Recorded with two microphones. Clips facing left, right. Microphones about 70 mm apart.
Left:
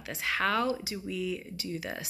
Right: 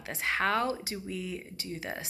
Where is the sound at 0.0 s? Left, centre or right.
Right.